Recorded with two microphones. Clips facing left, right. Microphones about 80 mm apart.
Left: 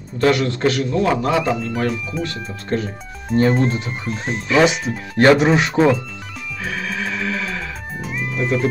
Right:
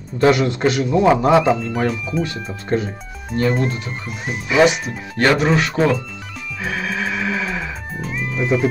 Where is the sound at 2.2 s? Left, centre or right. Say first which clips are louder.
Right 1 dB; centre.